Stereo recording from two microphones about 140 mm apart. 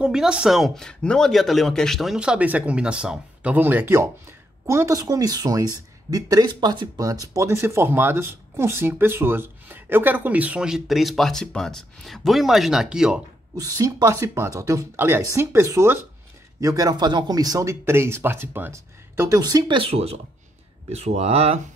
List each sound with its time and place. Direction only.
0.0 s speech: 5° right (ahead or behind)
13.6 s speech: 25° right (ahead or behind); by 21.5 s 45° right (ahead or behind)